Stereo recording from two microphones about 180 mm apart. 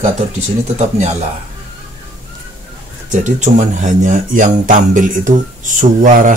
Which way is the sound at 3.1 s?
40° right (ahead or behind).